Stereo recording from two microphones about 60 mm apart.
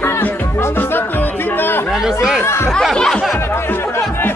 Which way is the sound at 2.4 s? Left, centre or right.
Left.